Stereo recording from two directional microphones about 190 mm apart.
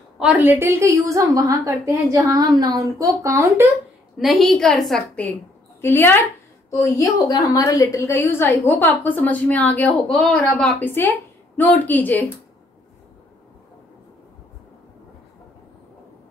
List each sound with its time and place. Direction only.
0.2 s a woman's voice: 10° right (ahead or behind)
4.2 s a woman's voice: centre (ahead or behind)